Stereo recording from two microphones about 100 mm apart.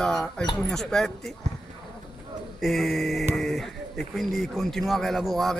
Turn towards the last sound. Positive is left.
turn(degrees=0)  # may be behind; listen again after turning